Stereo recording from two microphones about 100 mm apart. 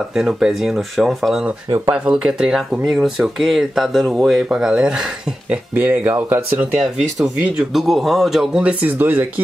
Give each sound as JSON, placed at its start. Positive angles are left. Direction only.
{"t": 0.1, "sound": "speech", "side_deg": -5}
{"t": 8.8, "sound": "speech", "side_deg": -20}